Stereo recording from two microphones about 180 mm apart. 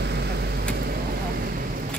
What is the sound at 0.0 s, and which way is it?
Vehicle, 65° right (ahead or behind).